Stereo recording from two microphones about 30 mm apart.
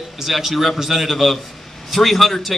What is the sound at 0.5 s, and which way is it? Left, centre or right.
Speech, centre.